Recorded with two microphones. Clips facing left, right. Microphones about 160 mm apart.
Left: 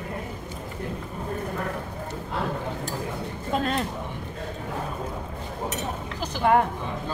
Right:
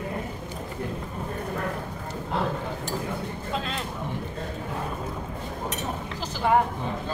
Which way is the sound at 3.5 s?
50° left (ahead or behind).